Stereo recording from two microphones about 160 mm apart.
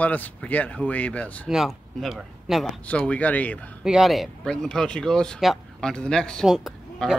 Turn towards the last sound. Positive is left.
turn(degrees=0)  # may be behind; listen again after turning